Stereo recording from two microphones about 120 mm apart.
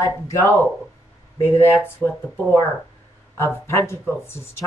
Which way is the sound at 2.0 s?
15° right (ahead or behind).